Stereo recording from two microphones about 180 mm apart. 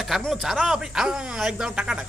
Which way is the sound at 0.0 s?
Centre (ahead or behind).